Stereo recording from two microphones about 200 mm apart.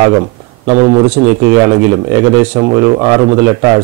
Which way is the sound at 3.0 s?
20° right (ahead or behind).